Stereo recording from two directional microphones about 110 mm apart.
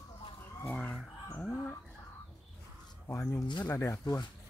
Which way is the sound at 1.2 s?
10° left (ahead or behind).